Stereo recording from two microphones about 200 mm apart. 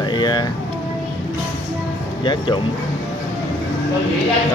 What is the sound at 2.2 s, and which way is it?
Cutlery, 25° left (ahead or behind).